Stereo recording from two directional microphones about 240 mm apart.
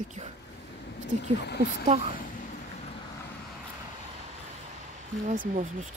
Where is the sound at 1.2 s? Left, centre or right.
Left.